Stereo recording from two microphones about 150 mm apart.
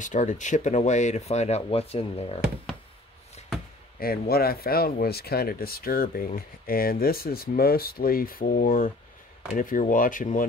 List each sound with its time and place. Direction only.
0.0 s speech: 55° left (ahead or behind); by 2.4 s 40° left (ahead or behind)
4.0 s speech: 90° left; by 10.4 s 60° left (ahead or behind)